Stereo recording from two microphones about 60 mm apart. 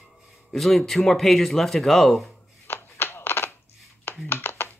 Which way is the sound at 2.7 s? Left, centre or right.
Left.